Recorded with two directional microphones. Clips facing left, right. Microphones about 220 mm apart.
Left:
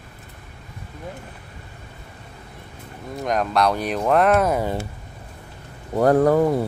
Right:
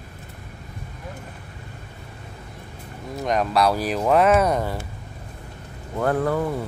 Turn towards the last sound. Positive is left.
turn(degrees=40)  # may be behind; listen again after turning